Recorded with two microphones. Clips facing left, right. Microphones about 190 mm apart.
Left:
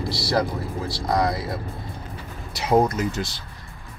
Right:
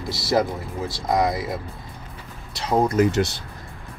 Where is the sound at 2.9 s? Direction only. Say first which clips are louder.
Right 7 dB; 60° right (ahead or behind).